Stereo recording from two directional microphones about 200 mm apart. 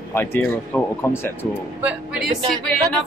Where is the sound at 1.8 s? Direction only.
5° right (ahead or behind).